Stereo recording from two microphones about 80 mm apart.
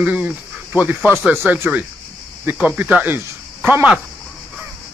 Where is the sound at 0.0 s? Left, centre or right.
Centre.